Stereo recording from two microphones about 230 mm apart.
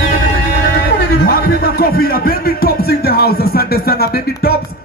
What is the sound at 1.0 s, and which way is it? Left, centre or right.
Speech, left.